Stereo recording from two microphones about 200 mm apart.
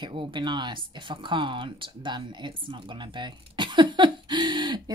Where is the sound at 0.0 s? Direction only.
25° right (ahead or behind).